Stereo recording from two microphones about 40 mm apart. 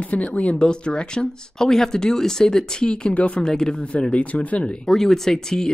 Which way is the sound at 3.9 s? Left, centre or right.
Left.